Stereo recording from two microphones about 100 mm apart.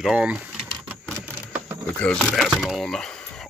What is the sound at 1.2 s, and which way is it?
Keys jangling, 15° right (ahead or behind).